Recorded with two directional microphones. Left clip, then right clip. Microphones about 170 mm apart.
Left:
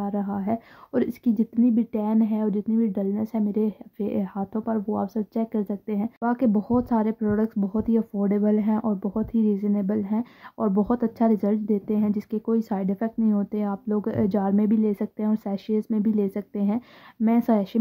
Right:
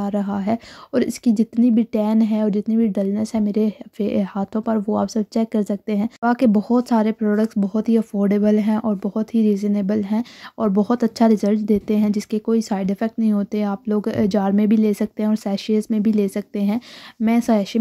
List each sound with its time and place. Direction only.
0.0 s speech: 25° right (ahead or behind)